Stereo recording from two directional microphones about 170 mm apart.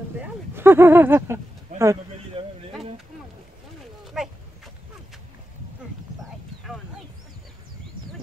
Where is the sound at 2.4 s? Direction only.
30° right (ahead or behind).